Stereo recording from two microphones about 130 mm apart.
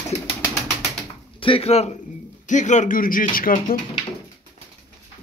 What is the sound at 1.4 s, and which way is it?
Speech, 45° left (ahead or behind).